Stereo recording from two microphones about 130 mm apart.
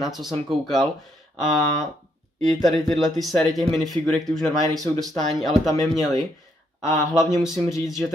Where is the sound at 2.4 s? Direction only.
Centre (ahead or behind).